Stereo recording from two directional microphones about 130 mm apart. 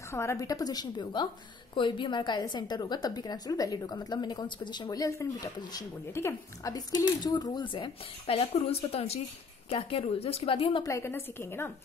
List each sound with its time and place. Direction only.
0.1 s a woman's voice: 20° left (ahead or behind); by 10.8 s 45° left (ahead or behind)
10.8 s a woman's voice: 25° left (ahead or behind)